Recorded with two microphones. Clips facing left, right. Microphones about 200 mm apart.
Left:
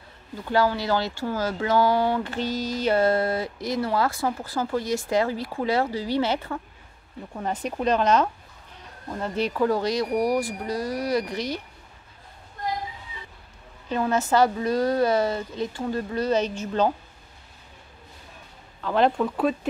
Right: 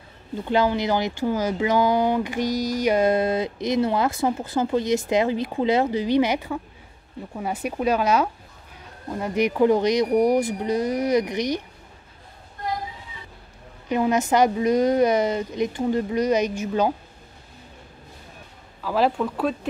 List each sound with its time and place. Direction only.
0.4 s a woman's voice: 20° right (ahead or behind)
13.8 s a woman's voice: 15° right (ahead or behind)
18.8 s speech: 5° right (ahead or behind)